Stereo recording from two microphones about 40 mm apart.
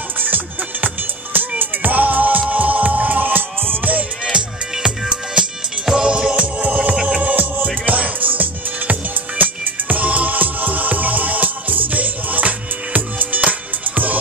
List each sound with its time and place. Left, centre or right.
0.2 s music: right
4.2 s music: centre
6.0 s music: right
6.3 s music: right